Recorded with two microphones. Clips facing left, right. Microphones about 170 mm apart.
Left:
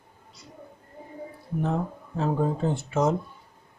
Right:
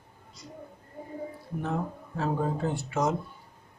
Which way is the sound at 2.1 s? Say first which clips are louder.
Left 3 dB; 25° left (ahead or behind).